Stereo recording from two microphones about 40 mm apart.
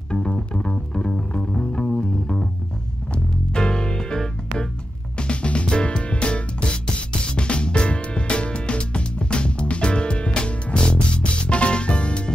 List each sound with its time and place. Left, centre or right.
0.1 s music: left